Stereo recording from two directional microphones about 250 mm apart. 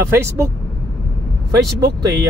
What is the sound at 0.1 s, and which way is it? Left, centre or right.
Speech, centre.